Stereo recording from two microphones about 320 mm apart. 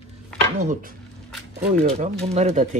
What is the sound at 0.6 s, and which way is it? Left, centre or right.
Speech, right.